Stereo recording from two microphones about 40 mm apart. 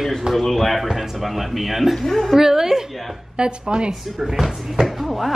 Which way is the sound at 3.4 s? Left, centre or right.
Right.